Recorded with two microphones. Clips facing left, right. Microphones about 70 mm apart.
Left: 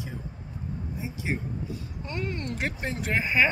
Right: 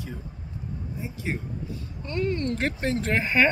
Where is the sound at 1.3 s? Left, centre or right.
Centre.